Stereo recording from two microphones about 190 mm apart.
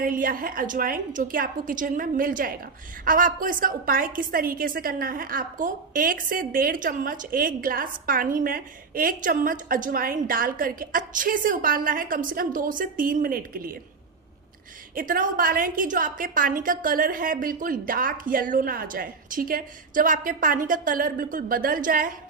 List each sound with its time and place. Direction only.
0.0 s a woman's voice: 45° right (ahead or behind)
15.0 s a woman's voice: 45° right (ahead or behind)